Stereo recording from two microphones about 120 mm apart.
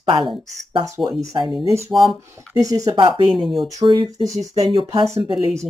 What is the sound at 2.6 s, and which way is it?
Speech, 30° right (ahead or behind).